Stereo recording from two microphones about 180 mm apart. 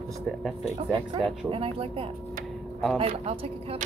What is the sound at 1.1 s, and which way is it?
Speech, 30° right (ahead or behind).